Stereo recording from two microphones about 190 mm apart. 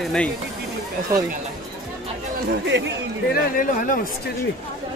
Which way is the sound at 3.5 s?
45° left (ahead or behind).